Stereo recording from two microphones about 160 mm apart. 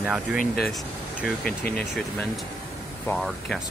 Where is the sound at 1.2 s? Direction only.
5° left (ahead or behind).